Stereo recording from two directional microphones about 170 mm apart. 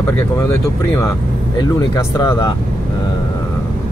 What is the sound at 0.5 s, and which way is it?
Speech, 15° left (ahead or behind).